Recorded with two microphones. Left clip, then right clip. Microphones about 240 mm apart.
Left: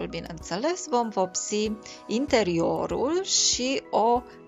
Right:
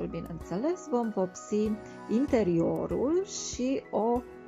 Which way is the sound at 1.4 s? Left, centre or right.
Left.